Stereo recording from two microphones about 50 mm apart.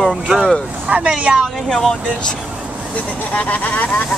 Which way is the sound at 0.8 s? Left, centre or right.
Right.